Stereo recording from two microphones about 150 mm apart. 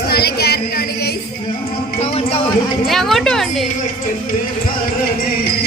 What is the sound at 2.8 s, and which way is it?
Speech, centre (ahead or behind).